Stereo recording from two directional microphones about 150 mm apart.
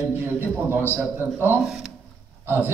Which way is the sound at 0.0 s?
15° right (ahead or behind).